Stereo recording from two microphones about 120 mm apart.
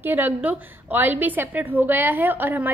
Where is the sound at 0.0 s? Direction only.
15° right (ahead or behind).